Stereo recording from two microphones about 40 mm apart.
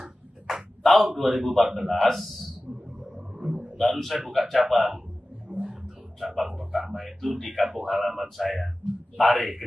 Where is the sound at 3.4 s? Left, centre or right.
Centre.